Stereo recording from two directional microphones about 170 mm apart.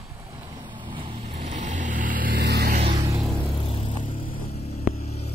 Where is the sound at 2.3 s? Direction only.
80° right.